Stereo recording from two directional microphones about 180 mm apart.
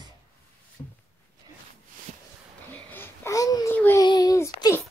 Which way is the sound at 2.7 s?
10° left (ahead or behind).